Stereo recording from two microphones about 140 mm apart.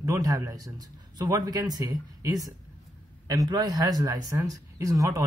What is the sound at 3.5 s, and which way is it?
Speech, 25° right (ahead or behind).